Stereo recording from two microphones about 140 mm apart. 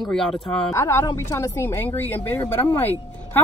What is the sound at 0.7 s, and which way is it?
Speech, 20° left (ahead or behind).